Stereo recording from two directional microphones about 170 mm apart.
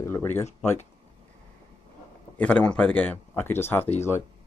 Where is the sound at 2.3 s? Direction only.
10° left (ahead or behind).